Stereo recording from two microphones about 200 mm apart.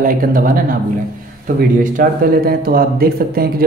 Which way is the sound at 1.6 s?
45° right (ahead or behind).